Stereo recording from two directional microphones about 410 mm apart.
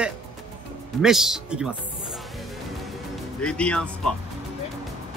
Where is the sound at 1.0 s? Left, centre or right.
Centre.